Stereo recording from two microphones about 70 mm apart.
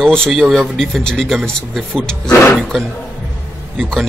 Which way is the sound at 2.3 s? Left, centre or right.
Left.